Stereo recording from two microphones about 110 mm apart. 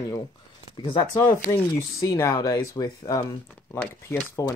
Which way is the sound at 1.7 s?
30° left (ahead or behind).